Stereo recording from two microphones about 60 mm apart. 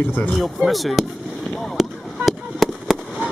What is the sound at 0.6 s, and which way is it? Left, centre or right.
Speech, centre.